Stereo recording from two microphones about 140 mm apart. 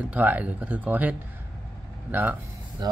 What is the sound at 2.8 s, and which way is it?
Speech, 30° right (ahead or behind).